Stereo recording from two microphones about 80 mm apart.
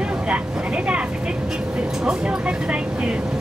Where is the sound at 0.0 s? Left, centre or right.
Centre.